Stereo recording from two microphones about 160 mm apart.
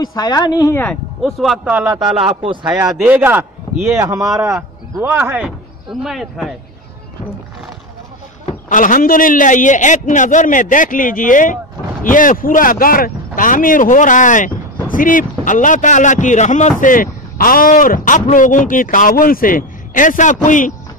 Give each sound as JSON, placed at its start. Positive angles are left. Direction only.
{"t": 0.0, "sound": "speech", "side_deg": 25}
{"t": 1.2, "sound": "speech", "side_deg": 0}
{"t": 1.6, "sound": "speech", "side_deg": -10}
{"t": 1.9, "sound": "speech", "side_deg": -25}
{"t": 2.8, "sound": "speech", "side_deg": -15}
{"t": 5.9, "sound": "speech", "side_deg": 0}
{"t": 8.6, "sound": "speech", "side_deg": 55}